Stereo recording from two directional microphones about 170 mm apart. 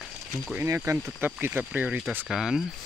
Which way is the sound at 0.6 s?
15° right (ahead or behind).